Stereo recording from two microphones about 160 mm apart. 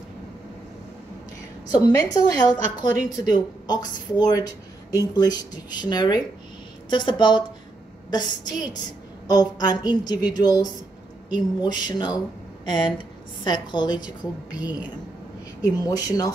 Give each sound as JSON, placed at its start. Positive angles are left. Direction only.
{"t": 1.7, "sound": "a woman's voice", "side_deg": 20}